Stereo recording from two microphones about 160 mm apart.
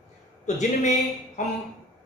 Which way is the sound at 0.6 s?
50° left (ahead or behind).